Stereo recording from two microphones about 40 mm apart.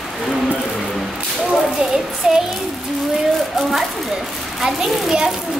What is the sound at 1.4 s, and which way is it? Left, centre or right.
Speech, centre.